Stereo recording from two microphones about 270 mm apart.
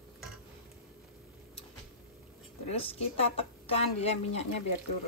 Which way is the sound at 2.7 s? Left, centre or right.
Left.